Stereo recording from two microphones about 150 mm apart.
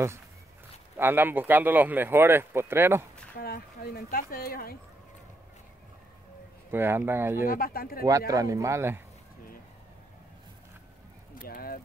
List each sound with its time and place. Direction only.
0.9 s speech: 15° right (ahead or behind)
3.3 s speech: 85° left
6.7 s speech: 15° right (ahead or behind)
7.4 s speech: 75° left (ahead or behind)
8.3 s speech: 20° right (ahead or behind)
11.3 s a sound: 80° left